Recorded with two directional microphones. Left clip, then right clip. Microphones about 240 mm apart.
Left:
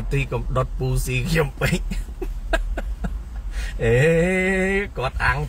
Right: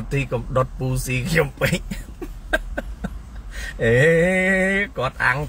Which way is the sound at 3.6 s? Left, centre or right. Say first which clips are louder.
Right 2 dB; centre.